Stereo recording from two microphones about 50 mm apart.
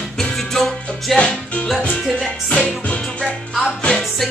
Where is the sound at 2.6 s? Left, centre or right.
Left.